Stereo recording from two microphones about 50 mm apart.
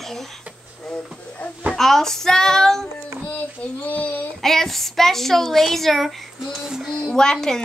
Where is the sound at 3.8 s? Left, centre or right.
Left.